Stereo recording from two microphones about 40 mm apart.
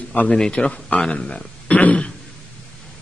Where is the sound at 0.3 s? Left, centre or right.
Left.